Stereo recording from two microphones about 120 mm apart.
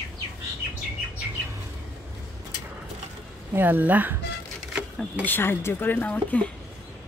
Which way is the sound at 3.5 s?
15° right (ahead or behind).